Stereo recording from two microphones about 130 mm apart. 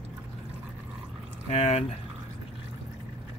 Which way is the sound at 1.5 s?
55° left (ahead or behind).